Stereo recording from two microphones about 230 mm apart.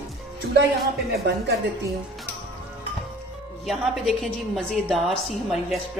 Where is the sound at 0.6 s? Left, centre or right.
Right.